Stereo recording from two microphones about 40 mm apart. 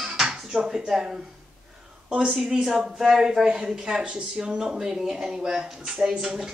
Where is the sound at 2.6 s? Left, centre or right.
Centre.